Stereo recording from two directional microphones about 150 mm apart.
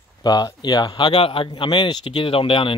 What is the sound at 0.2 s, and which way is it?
Speech, 25° left (ahead or behind).